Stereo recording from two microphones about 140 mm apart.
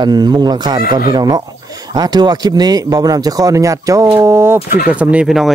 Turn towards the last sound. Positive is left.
turn(degrees=-5)  # may be behind; listen again after turning